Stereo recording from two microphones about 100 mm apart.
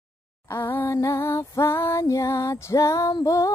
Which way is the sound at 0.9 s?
30° left (ahead or behind).